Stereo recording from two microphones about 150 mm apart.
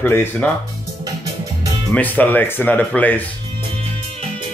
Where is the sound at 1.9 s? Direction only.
10° left (ahead or behind).